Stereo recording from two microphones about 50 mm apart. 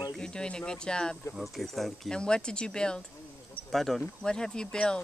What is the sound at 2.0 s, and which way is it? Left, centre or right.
Speech, centre.